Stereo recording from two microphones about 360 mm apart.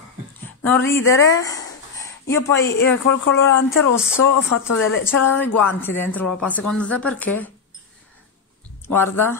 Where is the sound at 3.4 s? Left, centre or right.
Centre.